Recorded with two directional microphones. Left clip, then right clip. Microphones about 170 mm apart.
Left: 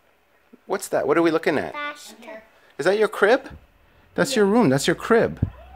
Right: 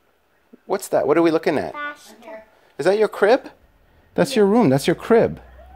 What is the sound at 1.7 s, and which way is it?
Speech, 5° left (ahead or behind).